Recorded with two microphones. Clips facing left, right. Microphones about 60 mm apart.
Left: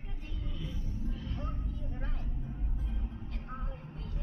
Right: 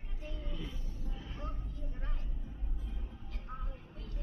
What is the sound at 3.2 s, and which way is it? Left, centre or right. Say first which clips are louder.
Music: left 4 dB; left.